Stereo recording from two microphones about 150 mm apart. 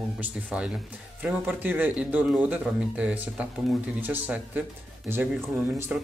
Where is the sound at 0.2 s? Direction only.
5° right (ahead or behind).